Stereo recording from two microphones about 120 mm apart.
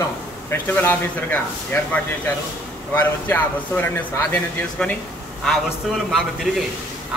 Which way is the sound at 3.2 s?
15° left (ahead or behind).